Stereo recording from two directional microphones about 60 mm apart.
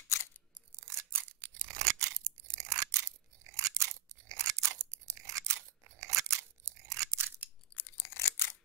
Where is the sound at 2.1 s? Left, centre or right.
Right.